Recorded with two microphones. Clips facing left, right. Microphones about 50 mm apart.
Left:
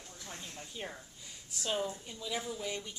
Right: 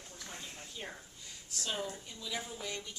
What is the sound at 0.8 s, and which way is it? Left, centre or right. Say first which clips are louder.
A woman's voice: left 2 dB; centre.